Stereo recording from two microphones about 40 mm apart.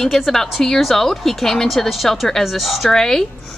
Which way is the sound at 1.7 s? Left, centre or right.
Centre.